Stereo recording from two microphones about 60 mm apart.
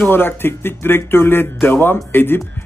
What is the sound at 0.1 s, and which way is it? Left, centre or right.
Speech, left.